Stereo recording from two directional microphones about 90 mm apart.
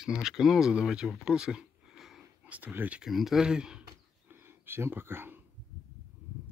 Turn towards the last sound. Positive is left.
turn(degrees=-25)  # may be behind; listen again after turning